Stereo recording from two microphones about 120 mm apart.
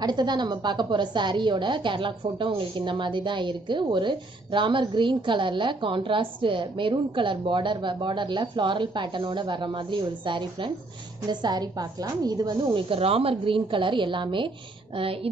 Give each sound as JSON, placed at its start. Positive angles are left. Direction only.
{"t": 0.0, "sound": "a woman's voice", "side_deg": -35}
{"t": 12.9, "sound": "a woman's voice", "side_deg": -55}